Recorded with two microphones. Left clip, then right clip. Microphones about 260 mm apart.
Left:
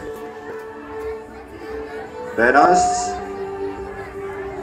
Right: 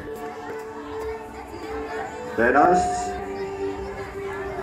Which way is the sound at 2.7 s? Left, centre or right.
Left.